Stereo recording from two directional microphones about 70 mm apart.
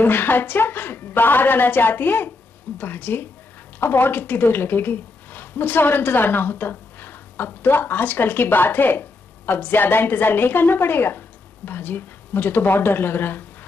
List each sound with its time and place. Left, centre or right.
0.0 s a woman's voice: left